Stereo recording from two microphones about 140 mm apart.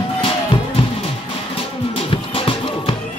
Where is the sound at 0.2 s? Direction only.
40° left (ahead or behind).